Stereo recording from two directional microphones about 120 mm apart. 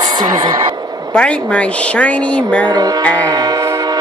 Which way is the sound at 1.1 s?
10° left (ahead or behind).